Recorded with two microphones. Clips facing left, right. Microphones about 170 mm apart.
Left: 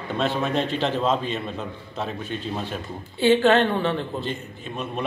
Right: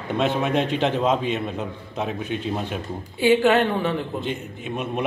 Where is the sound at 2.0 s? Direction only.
10° right (ahead or behind).